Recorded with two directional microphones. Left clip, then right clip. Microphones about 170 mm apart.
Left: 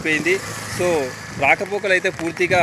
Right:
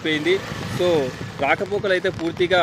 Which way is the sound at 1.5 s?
5° left (ahead or behind).